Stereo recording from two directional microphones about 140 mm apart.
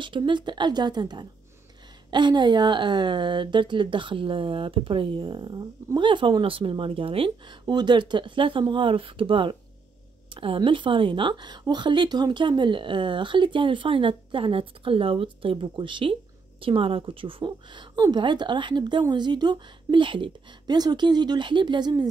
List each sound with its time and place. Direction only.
0.0 s a woman's voice: 35° right (ahead or behind)